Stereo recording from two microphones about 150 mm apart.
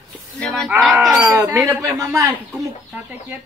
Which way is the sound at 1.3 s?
20° right (ahead or behind).